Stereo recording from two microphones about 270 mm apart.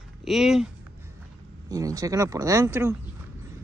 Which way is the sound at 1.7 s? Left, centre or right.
Centre.